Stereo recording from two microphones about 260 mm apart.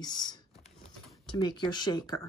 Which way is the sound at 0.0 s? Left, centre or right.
Centre.